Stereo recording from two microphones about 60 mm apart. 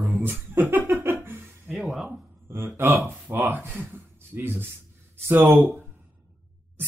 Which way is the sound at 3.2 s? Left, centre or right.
Right.